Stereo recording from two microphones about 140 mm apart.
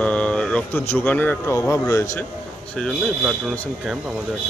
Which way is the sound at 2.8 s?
Centre (ahead or behind).